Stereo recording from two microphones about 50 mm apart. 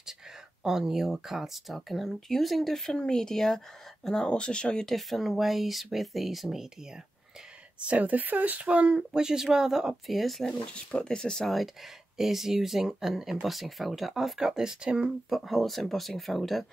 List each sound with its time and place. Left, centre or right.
0.7 s speech: centre
2.9 s a woman's voice: centre
4.8 s speech: centre
7.8 s speech: right; by 10.4 s centre
10.7 s a woman's voice: centre
15.2 s speech: centre